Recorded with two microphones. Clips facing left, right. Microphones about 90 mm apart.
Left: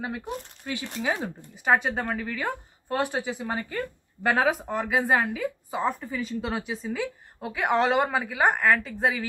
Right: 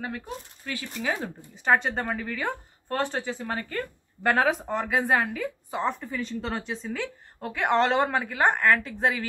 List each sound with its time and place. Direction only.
0.7 s speech: 20° left (ahead or behind)
1.0 s speech: 10° left (ahead or behind)